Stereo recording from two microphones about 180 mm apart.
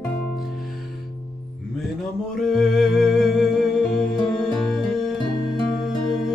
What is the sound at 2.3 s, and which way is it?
Music, centre (ahead or behind).